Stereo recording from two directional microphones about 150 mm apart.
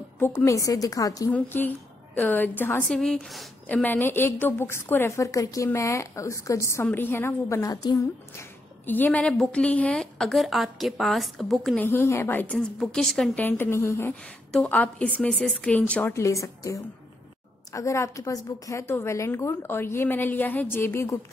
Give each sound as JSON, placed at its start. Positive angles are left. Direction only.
{"t": 0.2, "sound": "a woman's voice", "side_deg": 15}
{"t": 1.3, "sound": "a woman's voice", "side_deg": 10}
{"t": 8.8, "sound": "a woman's voice", "side_deg": 10}
{"t": 11.8, "sound": "a woman's voice", "side_deg": 15}